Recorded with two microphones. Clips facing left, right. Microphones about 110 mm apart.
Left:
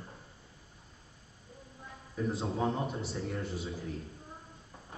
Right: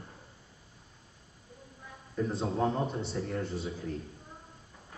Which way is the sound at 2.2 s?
Centre (ahead or behind).